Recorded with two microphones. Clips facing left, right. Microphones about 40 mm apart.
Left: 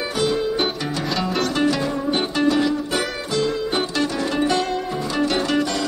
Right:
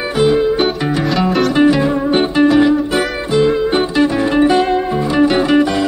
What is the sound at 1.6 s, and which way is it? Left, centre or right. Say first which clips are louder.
Music: right 10 dB; right.